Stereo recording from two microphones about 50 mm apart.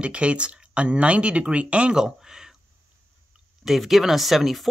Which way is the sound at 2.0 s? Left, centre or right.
Centre.